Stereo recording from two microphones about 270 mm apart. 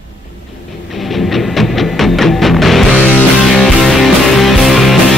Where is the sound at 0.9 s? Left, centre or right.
Centre.